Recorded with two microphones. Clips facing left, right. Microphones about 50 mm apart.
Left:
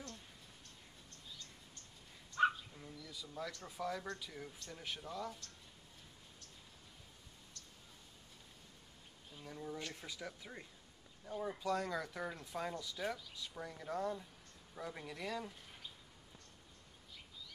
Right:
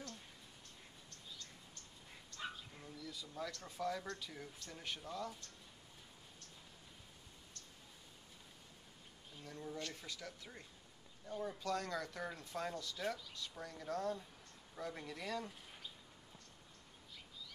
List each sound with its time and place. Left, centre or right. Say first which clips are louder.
2.8 s a sound: right 1 dB; centre
3.5 s speech: right 1 dB; centre
9.4 s speech: left 1 dB; centre